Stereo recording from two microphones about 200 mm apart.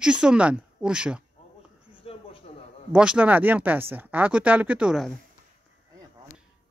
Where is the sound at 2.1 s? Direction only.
30° left (ahead or behind).